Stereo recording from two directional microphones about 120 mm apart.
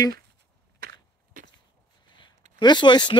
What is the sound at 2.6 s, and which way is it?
Speech, 40° left (ahead or behind).